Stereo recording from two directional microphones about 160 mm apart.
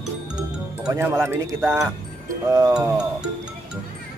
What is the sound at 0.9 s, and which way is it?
Speech, 15° right (ahead or behind).